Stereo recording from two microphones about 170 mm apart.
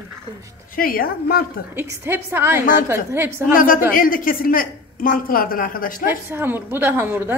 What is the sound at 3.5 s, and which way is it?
A woman's voice, 55° left (ahead or behind).